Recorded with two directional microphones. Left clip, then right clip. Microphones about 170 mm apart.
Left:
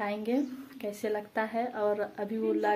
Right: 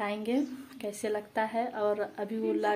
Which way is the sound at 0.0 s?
10° right (ahead or behind).